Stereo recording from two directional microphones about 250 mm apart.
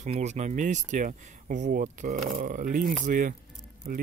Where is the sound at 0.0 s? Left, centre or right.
Right.